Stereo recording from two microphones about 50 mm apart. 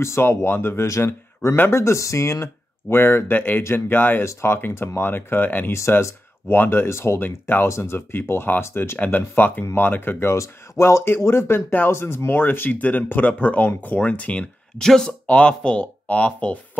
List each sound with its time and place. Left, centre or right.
0.0 s speech: left
2.9 s speech: left
4.2 s speech: left
4.6 s speech: left
5.7 s speech: left
7.2 s speech: left
7.6 s speech: left
8.9 s speech: left
10.3 s speech: left
11.2 s speech: left
14.8 s speech: centre
15.2 s speech: left